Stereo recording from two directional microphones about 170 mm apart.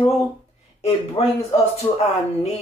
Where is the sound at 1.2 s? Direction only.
35° left (ahead or behind).